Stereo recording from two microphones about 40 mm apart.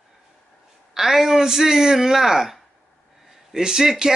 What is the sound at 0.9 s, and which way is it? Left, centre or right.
A man's voice, centre.